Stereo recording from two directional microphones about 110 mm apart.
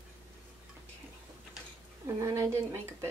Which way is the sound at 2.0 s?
25° right (ahead or behind).